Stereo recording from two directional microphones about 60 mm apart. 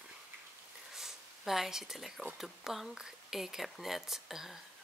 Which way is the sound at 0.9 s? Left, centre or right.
Centre.